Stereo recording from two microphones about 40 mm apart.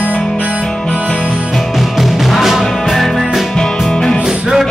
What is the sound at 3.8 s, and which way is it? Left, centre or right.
Music, centre.